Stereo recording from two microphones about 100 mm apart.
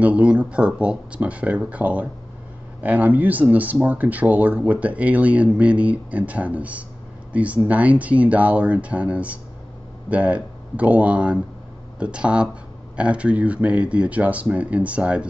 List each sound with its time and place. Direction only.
0.0 s speech: 10° right (ahead or behind)